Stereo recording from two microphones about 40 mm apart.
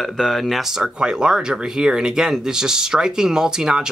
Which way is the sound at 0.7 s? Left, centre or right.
Centre.